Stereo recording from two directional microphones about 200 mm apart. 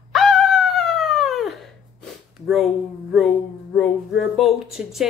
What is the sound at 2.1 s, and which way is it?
Sniff, centre (ahead or behind).